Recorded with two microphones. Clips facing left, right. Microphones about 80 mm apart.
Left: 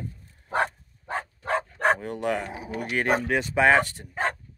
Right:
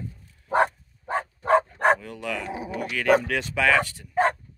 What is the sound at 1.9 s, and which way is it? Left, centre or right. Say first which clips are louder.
Speech: left 4 dB; left.